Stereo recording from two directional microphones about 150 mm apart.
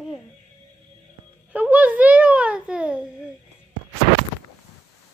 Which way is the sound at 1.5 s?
10° right (ahead or behind).